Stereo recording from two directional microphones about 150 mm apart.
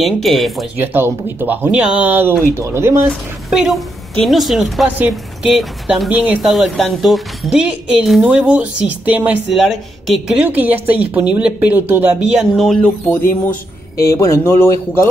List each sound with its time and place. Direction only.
0.0 s a woman's voice: centre (ahead or behind)
0.7 s speech: 15° right (ahead or behind)
3.1 s a woman's voice: centre (ahead or behind)
12.5 s a woman's voice: centre (ahead or behind)
13.1 s speech: 15° left (ahead or behind)